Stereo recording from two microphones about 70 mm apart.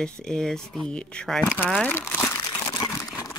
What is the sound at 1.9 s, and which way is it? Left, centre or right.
Speech, left.